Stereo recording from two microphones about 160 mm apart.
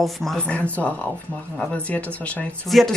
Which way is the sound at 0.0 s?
Centre (ahead or behind).